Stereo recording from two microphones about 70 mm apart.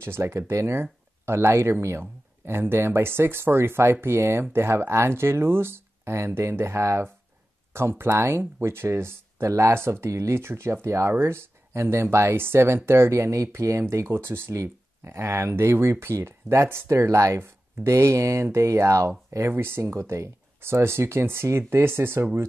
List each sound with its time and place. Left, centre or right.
0.0 s speech: right